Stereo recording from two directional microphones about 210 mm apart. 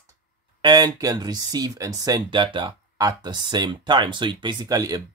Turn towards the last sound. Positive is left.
turn(degrees=-15)  # may be behind; listen again after turning